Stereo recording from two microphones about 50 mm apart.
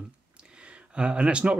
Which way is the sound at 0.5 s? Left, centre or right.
Right.